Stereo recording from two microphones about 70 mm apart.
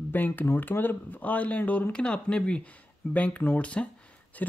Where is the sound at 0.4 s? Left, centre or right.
Left.